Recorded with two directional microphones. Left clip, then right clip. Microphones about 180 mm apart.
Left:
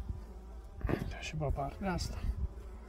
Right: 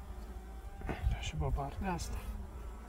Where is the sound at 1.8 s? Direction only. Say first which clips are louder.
Right 1 dB; 50° left (ahead or behind).